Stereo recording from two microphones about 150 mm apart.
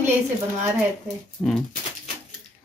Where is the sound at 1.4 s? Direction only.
15° left (ahead or behind).